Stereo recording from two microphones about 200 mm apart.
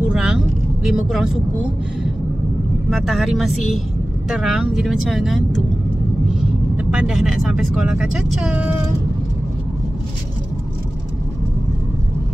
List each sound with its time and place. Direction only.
0.1 s vehicle: 5° right (ahead or behind)
0.8 s speech: centre (ahead or behind)
2.9 s speech: centre (ahead or behind)
6.8 s speech: 5° right (ahead or behind)